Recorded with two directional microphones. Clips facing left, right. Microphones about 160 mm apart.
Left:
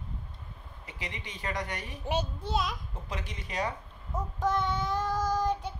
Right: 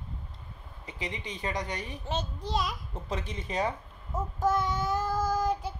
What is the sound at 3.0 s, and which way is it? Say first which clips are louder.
Speech: right 5 dB; 25° right (ahead or behind).